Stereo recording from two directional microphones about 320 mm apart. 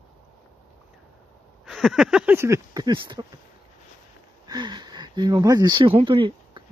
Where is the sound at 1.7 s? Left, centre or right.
Centre.